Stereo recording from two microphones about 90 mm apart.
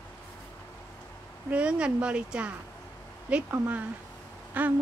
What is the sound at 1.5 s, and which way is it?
Speech, 10° right (ahead or behind).